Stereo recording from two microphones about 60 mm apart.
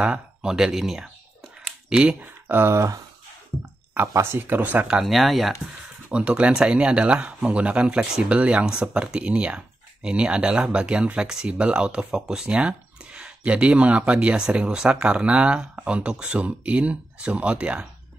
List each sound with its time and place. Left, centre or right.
0.0 s speech: centre
2.4 s speech: right
4.1 s speech: right
4.4 s speech: right
5.0 s speech: centre
6.0 s speech: right